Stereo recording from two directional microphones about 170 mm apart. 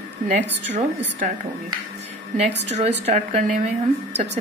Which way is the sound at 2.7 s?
40° right (ahead or behind).